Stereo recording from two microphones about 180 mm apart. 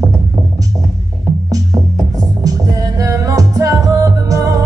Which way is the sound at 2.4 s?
20° right (ahead or behind).